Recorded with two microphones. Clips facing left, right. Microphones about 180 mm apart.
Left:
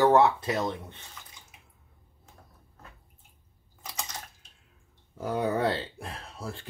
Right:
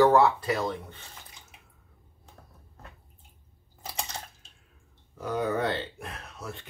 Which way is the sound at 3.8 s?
30° right (ahead or behind).